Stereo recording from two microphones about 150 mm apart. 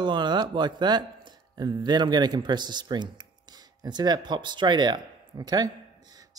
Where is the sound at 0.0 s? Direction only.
30° right (ahead or behind).